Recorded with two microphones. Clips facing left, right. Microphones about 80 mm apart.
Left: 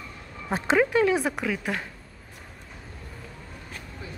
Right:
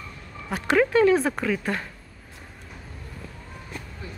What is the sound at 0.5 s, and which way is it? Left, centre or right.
Speech, left.